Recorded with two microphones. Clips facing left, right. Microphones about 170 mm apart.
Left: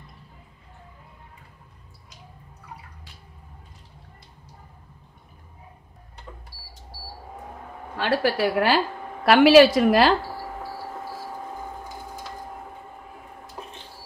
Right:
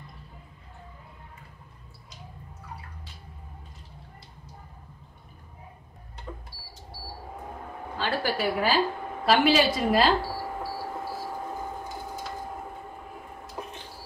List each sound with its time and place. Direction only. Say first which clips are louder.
8.0 s a woman's voice: left 5 dB; 75° left (ahead or behind)